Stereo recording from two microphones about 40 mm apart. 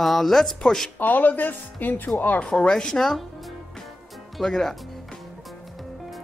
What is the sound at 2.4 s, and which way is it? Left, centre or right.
Speech, left.